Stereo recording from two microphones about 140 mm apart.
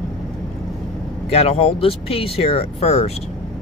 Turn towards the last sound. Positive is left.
turn(degrees=45)  # may be behind; listen again after turning